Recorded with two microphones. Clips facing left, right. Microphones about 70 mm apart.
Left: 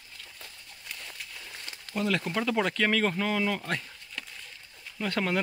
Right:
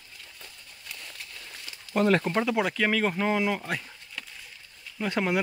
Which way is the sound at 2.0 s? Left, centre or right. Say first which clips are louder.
Right 6 dB; right.